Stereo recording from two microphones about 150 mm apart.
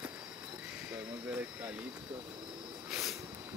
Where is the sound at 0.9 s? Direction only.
10° right (ahead or behind).